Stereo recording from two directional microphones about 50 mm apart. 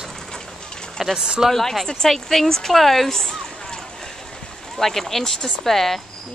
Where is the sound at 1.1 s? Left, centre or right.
Centre.